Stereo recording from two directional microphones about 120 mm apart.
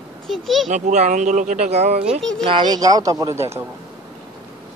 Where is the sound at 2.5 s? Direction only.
35° right (ahead or behind); by 3.6 s 20° right (ahead or behind).